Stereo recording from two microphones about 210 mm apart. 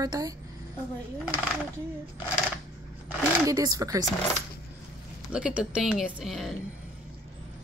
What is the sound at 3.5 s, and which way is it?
Speech, 15° right (ahead or behind).